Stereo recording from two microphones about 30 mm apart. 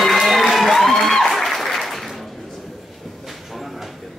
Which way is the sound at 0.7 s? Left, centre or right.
Centre.